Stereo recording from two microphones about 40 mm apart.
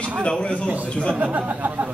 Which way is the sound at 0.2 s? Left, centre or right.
Left.